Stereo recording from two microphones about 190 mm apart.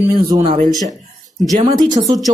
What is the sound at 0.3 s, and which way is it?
Speech, 25° right (ahead or behind).